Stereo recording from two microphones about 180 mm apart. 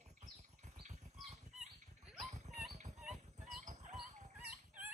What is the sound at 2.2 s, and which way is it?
Rodents, 40° right (ahead or behind).